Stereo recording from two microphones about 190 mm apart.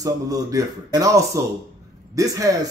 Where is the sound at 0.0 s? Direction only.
20° right (ahead or behind).